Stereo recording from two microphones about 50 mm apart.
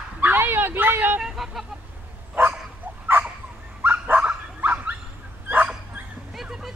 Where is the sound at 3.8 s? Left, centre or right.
Right.